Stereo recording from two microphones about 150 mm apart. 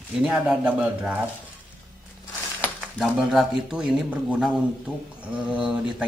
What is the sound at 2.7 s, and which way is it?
Cutlery, centre (ahead or behind).